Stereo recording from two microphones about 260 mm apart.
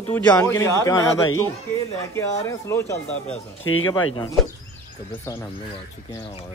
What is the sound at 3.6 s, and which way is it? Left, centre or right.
Speech, left.